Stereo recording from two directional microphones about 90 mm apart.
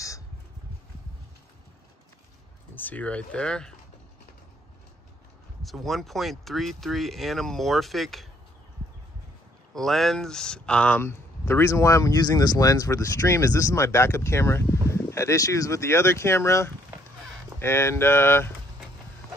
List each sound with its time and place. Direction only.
2.7 s speech: 20° left (ahead or behind)
5.6 s speech: centre (ahead or behind)
9.8 s speech: centre (ahead or behind)
11.0 s speech: 25° left (ahead or behind)